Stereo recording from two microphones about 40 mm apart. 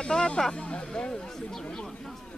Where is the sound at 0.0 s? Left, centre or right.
Centre.